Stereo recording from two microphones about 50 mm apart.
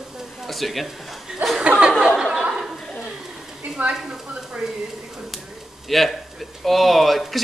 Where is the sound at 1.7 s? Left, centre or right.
Right.